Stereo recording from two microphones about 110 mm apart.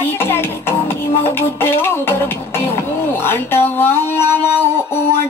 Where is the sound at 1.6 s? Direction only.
20° left (ahead or behind).